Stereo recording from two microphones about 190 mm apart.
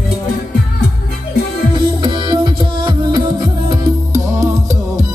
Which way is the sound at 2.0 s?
25° right (ahead or behind).